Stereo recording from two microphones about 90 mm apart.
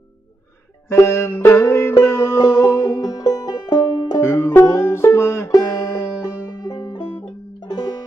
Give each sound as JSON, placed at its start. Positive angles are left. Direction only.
{"t": 0.8, "sound": "music", "side_deg": 30}
{"t": 4.2, "sound": "music", "side_deg": 30}
{"t": 6.6, "sound": "music", "side_deg": 50}